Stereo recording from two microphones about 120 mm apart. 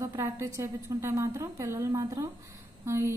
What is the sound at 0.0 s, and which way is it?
A woman's voice, 25° right (ahead or behind).